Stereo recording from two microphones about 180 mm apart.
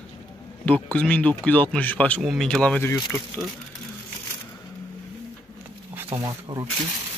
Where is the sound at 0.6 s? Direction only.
10° left (ahead or behind).